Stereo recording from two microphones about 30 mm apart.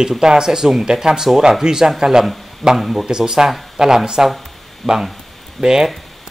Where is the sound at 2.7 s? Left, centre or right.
Centre.